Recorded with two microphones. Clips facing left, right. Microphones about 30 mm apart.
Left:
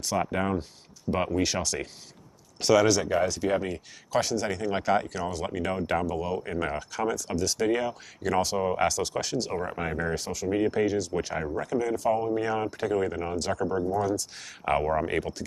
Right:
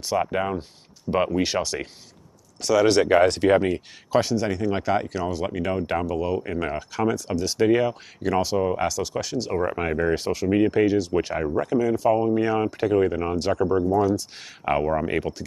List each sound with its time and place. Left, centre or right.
0.0 s speech: centre
2.9 s speech: right
3.4 s speech: right
4.1 s speech: centre
14.6 s speech: centre